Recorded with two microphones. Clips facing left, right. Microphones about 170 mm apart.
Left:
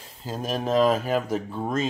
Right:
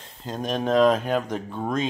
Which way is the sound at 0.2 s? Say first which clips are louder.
Right 2 dB; 5° left (ahead or behind).